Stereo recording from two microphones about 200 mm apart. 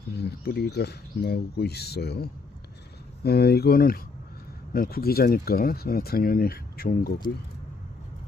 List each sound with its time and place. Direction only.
0.2 s speech: 55° left (ahead or behind)